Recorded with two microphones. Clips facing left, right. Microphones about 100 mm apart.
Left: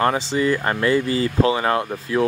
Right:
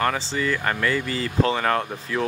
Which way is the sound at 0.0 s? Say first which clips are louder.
Left 5 dB; 20° left (ahead or behind).